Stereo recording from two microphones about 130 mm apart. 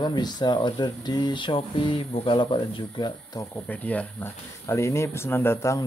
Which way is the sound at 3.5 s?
10° left (ahead or behind).